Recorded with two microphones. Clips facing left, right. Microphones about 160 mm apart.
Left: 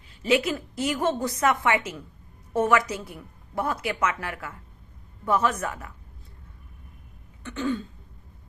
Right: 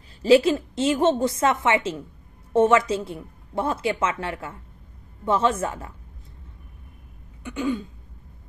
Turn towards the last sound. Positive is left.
turn(degrees=-10)  # may be behind; listen again after turning